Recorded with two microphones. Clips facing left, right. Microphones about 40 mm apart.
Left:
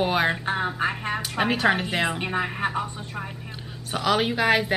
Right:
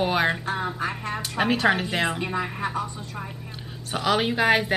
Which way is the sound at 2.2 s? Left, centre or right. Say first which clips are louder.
Left 2 dB; left.